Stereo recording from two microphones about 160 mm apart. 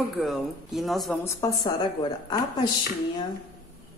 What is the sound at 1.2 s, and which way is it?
Speech, 25° left (ahead or behind).